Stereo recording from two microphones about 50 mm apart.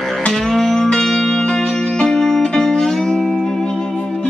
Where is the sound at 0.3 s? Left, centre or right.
Centre.